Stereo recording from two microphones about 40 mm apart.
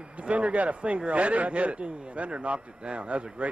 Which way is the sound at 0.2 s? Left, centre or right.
Right.